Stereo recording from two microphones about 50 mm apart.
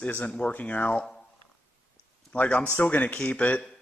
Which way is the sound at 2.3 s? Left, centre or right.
Left.